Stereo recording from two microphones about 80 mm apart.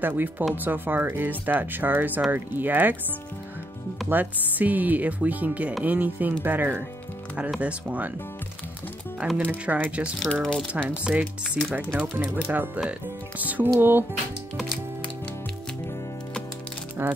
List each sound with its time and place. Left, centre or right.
0.0 s speech: right
4.1 s speech: right
9.5 s speech: centre
10.1 s speech: centre
10.7 s speech: centre
17.0 s speech: right